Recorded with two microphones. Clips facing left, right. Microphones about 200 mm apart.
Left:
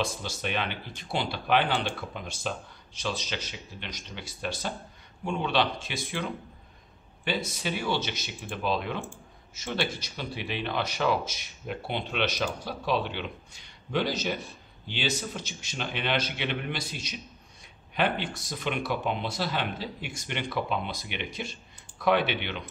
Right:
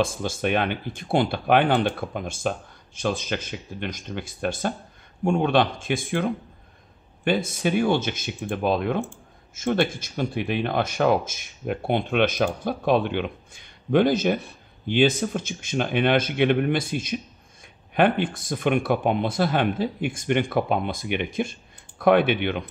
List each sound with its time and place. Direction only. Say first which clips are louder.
0.0 s speech: right 8 dB; 50° right (ahead or behind)